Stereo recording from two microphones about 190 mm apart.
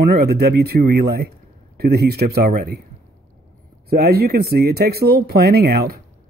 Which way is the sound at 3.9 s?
55° right (ahead or behind).